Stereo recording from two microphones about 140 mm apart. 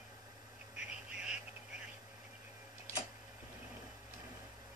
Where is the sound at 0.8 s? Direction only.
5° right (ahead or behind).